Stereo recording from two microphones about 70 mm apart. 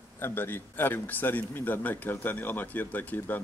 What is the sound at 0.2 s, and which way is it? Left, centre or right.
Speech, left.